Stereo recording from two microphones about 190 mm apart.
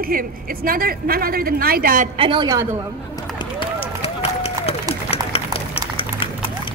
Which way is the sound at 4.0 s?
30° left (ahead or behind).